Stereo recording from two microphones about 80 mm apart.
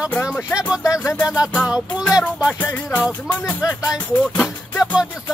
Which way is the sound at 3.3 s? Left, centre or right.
Left.